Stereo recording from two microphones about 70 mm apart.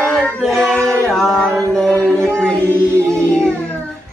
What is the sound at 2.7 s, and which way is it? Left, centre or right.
Music, right.